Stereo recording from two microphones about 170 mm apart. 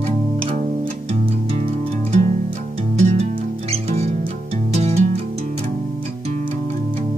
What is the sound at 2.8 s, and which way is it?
Music, 40° right (ahead or behind).